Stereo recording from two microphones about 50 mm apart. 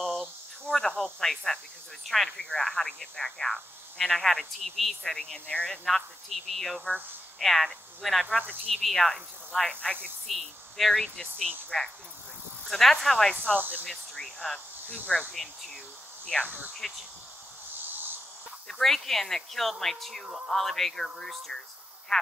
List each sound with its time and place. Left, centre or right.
0.0 s cricket: centre
2.0 s speech: centre
7.3 s insect: centre
8.6 s speech: centre
16.4 s speech: right
17.8 s a sound: right
18.7 s speech: centre